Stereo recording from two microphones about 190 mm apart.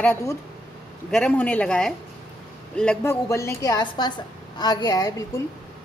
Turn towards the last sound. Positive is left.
turn(degrees=20)  # may be behind; listen again after turning